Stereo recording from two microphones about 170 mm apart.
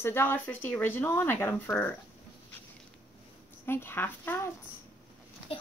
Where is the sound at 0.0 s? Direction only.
15° left (ahead or behind).